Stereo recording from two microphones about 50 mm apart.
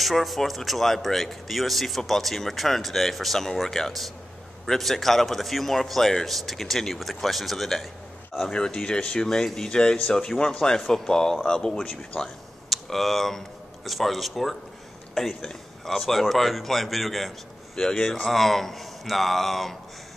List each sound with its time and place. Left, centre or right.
0.0 s speech: centre
8.4 s speech: centre
12.6 s speech: centre
17.7 s speech: centre